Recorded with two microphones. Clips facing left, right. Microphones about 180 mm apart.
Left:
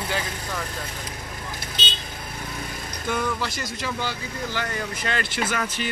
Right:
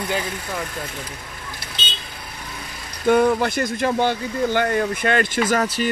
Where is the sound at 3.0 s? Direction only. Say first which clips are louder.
Right 11 dB; 55° right (ahead or behind).